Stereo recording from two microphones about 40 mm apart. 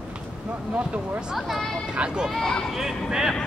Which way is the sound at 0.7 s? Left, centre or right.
Right.